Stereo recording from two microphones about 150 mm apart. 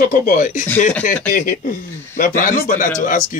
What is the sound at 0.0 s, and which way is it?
Speech, 65° left (ahead or behind).